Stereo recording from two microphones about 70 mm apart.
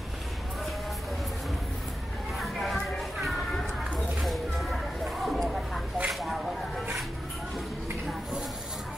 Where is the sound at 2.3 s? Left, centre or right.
Centre.